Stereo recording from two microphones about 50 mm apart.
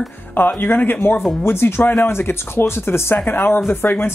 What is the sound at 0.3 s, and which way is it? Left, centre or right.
Speech, left.